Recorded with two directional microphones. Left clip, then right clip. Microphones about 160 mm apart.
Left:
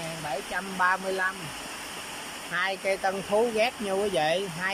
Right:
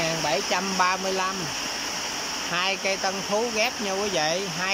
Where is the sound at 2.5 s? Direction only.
5° right (ahead or behind).